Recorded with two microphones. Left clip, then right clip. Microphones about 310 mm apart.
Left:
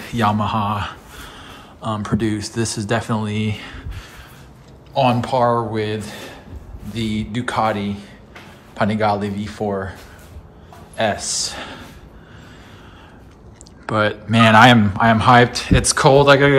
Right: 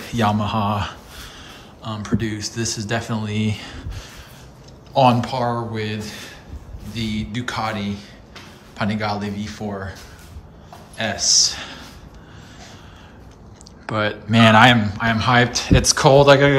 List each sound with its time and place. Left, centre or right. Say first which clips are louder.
0.0 s a man's voice: left 2 dB; centre
11.0 s a man's voice: right 2 dB; centre
13.8 s a man's voice: left 3 dB; centre